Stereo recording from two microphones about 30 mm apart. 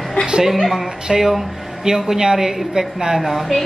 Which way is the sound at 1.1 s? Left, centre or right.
Centre.